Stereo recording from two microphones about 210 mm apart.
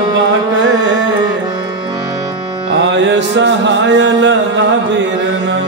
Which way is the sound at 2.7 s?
55° right (ahead or behind).